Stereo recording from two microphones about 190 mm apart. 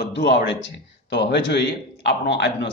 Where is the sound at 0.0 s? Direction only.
60° left (ahead or behind).